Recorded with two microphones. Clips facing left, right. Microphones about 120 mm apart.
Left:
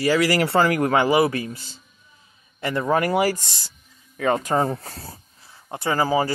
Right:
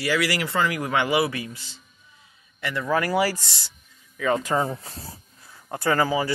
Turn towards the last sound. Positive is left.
turn(degrees=40)  # may be behind; listen again after turning